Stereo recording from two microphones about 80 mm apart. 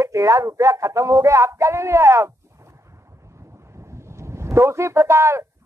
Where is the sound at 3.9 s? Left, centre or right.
Right.